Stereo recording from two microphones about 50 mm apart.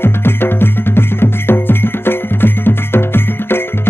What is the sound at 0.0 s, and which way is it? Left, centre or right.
Music, left.